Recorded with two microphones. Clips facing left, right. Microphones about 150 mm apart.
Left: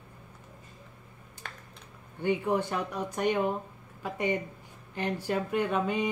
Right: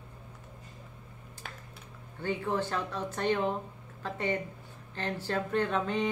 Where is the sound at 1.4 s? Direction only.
5° right (ahead or behind).